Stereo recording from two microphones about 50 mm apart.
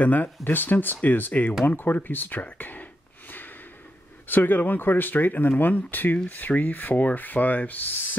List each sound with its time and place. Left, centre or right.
0.0 s rub: left
2.4 s a sound: left
4.3 s rub: left